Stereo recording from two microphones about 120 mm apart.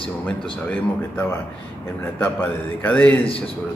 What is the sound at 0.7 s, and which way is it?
Speech, 10° left (ahead or behind).